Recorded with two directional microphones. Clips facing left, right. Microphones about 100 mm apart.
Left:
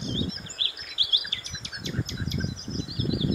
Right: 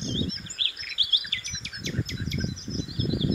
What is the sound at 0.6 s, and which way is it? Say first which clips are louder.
Bird: even; 25° left (ahead or behind).